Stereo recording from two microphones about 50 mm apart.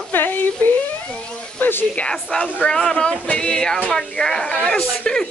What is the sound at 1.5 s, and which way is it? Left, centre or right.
Speech, left.